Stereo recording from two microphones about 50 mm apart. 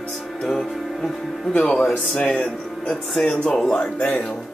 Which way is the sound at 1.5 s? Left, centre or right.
Left.